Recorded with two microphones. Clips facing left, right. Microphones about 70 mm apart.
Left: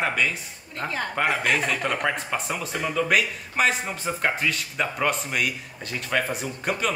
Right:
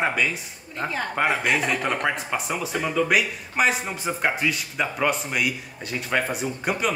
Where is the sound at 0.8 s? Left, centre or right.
Centre.